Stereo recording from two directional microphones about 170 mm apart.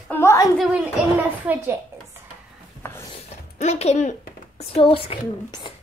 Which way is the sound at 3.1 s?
40° left (ahead or behind).